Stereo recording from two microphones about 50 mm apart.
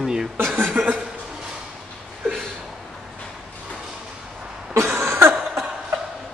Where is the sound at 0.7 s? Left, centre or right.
Right.